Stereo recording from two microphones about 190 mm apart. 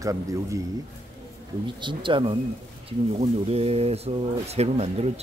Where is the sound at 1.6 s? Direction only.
25° right (ahead or behind).